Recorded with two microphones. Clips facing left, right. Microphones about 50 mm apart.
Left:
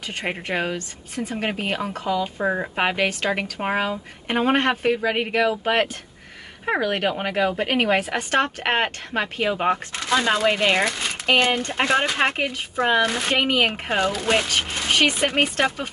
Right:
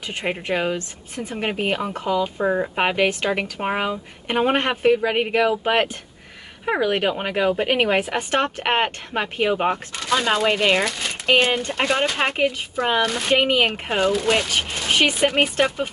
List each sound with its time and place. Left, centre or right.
0.1 s a woman's voice: centre
2.3 s speech: centre
2.7 s a woman's voice: centre
9.7 s speech: centre
10.3 s speech: centre
13.0 s speech: centre
13.3 s a woman's voice: centre